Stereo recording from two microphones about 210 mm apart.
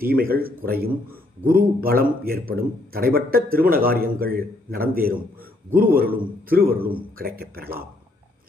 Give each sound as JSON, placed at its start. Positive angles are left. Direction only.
{"t": 0.0, "sound": "a man's voice", "side_deg": -45}